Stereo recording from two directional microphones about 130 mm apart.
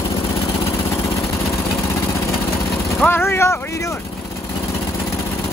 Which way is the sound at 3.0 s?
15° left (ahead or behind).